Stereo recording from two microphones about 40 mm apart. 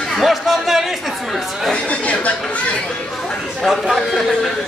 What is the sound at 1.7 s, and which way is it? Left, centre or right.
Speech, left.